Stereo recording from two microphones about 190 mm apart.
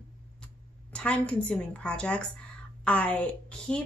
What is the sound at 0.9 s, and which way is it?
A woman's voice, 5° left (ahead or behind).